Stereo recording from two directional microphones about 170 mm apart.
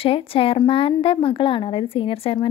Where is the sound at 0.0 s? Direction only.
35° left (ahead or behind).